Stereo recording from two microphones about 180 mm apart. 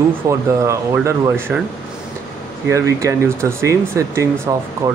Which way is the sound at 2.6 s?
15° right (ahead or behind).